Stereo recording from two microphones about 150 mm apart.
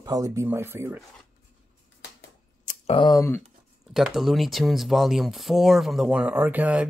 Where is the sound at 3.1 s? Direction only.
15° left (ahead or behind).